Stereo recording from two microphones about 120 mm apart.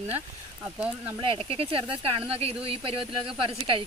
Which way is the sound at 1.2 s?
50° right (ahead or behind).